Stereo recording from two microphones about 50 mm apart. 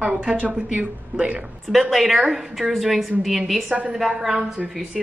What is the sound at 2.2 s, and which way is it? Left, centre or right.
Speech, centre.